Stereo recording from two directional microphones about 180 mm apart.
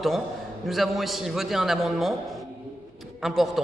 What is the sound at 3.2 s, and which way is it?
Speech, centre (ahead or behind).